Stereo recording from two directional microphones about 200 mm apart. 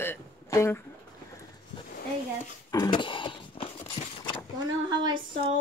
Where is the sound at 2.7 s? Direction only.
20° left (ahead or behind).